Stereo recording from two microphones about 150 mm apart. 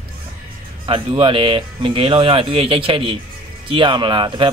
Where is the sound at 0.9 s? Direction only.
35° right (ahead or behind).